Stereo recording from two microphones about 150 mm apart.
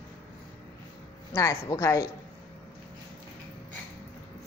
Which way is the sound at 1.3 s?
20° left (ahead or behind).